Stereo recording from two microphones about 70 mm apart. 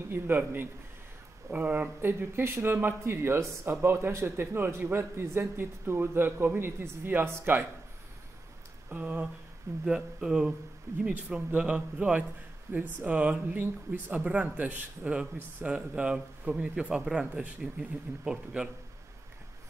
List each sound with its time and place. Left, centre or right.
0.1 s a man's voice: right
8.9 s speech: centre
12.7 s a man's voice: right
13.0 s speech: centre